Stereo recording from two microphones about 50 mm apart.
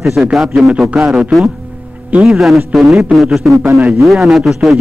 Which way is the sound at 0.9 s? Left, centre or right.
Right.